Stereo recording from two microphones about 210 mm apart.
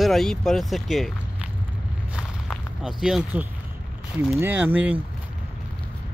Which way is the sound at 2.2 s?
Centre (ahead or behind).